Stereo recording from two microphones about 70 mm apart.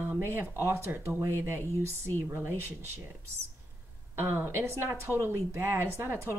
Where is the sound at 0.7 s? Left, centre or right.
Right.